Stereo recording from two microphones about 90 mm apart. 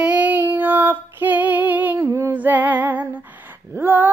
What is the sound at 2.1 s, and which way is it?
Female singing, 30° right (ahead or behind).